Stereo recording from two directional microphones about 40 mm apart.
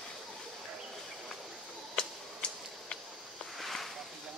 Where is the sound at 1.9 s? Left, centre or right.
Left.